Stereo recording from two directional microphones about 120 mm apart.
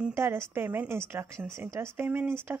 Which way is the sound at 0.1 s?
20° right (ahead or behind).